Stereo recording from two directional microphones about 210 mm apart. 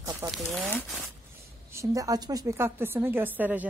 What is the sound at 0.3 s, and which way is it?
Speech, centre (ahead or behind).